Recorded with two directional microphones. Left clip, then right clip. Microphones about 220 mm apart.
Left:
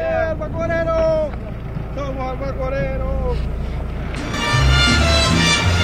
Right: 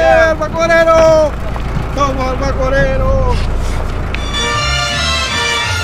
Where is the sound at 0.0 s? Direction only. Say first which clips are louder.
Right 11 dB; 40° right (ahead or behind).